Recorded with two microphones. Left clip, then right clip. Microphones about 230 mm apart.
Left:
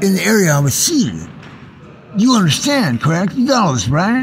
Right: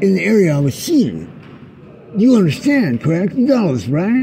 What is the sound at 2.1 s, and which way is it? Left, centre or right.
Speech, left.